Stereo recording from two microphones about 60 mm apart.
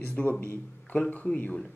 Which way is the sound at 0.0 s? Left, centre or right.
Left.